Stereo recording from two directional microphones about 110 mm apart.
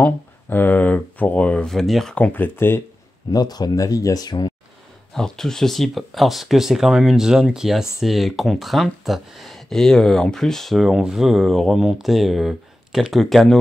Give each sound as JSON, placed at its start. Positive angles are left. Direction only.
{"t": 0.0, "sound": "speech", "side_deg": 15}
{"t": 3.3, "sound": "speech", "side_deg": 35}
{"t": 5.1, "sound": "speech", "side_deg": 5}